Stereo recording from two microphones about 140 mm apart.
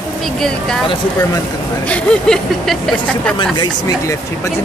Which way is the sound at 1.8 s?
10° left (ahead or behind).